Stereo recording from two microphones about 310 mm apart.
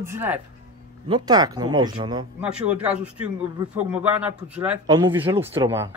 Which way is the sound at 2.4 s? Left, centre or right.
Centre.